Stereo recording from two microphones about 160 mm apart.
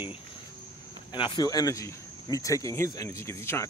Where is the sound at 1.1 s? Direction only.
30° left (ahead or behind).